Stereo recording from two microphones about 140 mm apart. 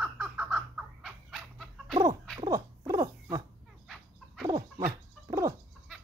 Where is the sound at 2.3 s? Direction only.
25° right (ahead or behind).